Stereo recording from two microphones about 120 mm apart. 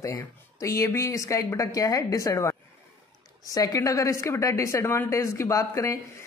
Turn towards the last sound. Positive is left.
turn(degrees=25)  # may be behind; listen again after turning